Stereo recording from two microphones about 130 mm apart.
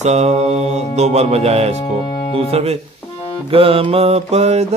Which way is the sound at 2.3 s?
50° right (ahead or behind).